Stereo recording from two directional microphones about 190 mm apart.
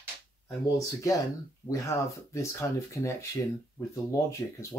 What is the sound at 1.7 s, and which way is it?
Speech, 15° left (ahead or behind).